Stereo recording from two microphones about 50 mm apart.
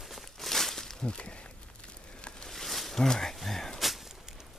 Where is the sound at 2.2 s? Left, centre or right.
Left.